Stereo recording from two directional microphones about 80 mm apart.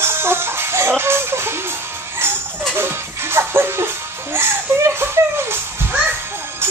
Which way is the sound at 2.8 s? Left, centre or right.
Right.